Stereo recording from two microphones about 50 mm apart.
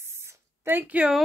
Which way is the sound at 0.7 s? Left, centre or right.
Right.